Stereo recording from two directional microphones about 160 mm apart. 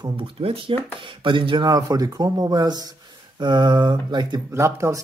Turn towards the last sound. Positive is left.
turn(degrees=-15)  # may be behind; listen again after turning